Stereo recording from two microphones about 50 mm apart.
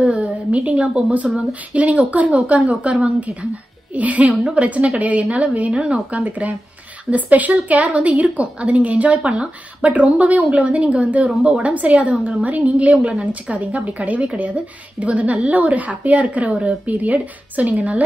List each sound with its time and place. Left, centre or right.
0.0 s a sound: right
0.7 s a woman's voice: right
6.2 s a woman's voice: right